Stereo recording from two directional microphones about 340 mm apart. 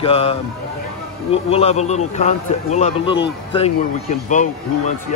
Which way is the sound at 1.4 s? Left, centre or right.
Centre.